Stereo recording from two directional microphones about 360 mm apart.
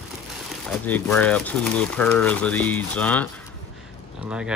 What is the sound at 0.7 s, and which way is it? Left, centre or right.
Speech, centre.